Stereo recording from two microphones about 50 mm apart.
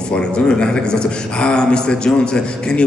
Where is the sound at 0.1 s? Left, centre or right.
Centre.